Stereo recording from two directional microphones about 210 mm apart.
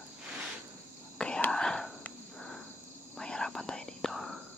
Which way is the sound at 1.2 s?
5° left (ahead or behind).